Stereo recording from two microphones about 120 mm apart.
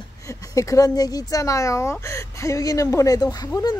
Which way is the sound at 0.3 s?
30° left (ahead or behind).